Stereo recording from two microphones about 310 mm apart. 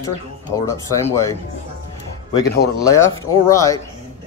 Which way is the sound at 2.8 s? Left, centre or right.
Centre.